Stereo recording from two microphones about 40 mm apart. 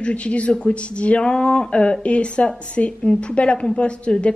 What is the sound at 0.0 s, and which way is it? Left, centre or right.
A woman's voice, left.